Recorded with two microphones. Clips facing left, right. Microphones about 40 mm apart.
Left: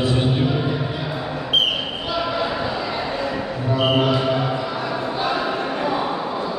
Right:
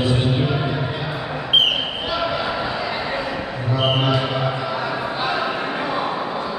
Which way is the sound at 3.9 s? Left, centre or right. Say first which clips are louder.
Left 2 dB; centre.